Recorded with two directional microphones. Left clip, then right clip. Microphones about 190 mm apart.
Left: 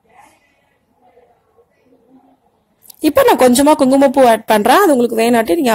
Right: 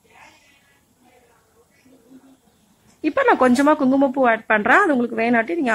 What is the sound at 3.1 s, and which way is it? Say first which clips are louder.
A woman's voice: left 6 dB; 30° left (ahead or behind).